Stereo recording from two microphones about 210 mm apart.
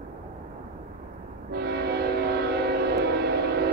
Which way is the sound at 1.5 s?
50° right (ahead or behind).